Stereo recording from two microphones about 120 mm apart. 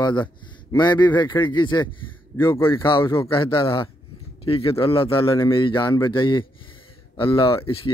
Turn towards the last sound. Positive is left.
turn(degrees=45)  # may be behind; listen again after turning